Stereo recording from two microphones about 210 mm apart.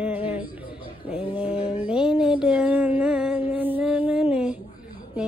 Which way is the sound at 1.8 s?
5° right (ahead or behind).